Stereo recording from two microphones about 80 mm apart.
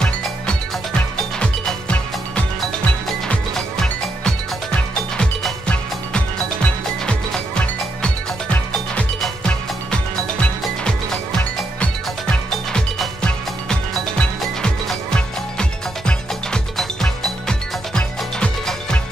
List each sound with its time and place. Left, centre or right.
1.4 s music: centre
9.2 s music: centre
11.8 s music: centre